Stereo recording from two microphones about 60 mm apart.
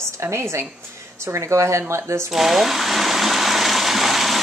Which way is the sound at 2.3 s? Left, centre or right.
Centre.